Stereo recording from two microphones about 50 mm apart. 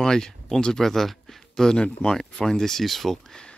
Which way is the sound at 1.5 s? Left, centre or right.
Centre.